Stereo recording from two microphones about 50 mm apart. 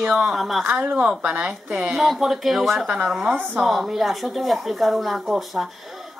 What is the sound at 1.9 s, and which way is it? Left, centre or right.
Speech, centre.